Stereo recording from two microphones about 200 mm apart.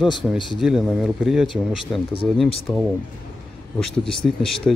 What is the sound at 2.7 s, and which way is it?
Speech, 20° left (ahead or behind).